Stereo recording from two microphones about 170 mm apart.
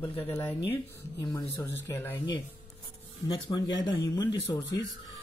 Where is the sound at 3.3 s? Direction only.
25° left (ahead or behind).